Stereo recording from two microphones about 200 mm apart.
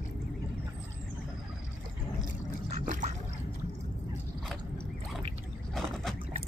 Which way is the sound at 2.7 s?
40° right (ahead or behind).